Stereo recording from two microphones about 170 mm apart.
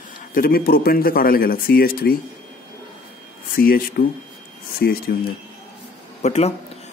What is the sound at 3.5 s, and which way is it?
Speech, 60° left (ahead or behind).